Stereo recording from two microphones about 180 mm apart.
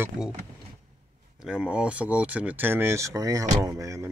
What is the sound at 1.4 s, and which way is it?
Speech, 5° right (ahead or behind).